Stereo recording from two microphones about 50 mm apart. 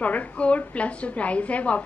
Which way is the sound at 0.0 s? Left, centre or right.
Left.